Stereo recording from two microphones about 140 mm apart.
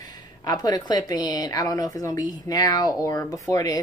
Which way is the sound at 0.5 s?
30° left (ahead or behind).